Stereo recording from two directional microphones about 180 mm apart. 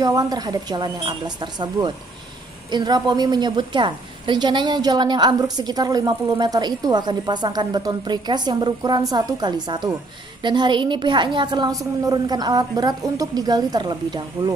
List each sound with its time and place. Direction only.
0.0 s a woman's voice: 20° right (ahead or behind)